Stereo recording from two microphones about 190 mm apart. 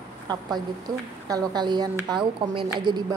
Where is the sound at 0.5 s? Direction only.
20° right (ahead or behind).